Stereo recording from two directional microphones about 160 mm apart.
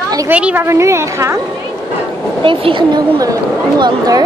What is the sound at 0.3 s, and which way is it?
A woman's voice, 10° right (ahead or behind).